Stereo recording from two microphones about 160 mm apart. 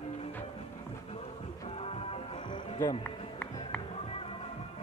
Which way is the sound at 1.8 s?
40° left (ahead or behind).